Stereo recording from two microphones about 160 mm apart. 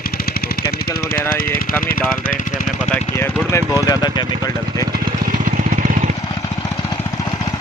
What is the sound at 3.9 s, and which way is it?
Speech, 25° left (ahead or behind).